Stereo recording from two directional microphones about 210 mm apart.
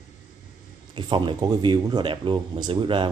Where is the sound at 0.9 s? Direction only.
25° right (ahead or behind).